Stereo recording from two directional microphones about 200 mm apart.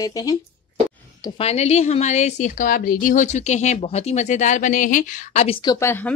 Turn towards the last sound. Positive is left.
turn(degrees=10)  # may be behind; listen again after turning